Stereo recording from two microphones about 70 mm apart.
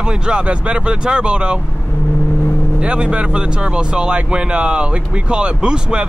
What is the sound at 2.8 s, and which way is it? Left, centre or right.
Speech, centre.